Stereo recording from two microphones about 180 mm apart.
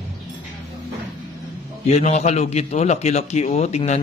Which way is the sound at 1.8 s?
35° left (ahead or behind).